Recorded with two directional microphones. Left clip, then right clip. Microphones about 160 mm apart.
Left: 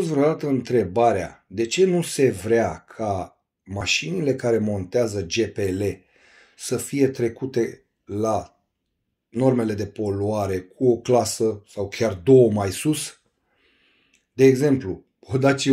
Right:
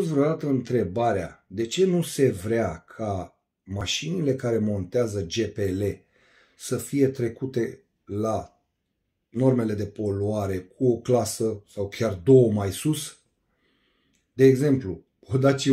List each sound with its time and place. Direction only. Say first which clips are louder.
0.0 s speech: left 3 dB; 20° right (ahead or behind)
14.1 s speech: left 2 dB; 20° right (ahead or behind)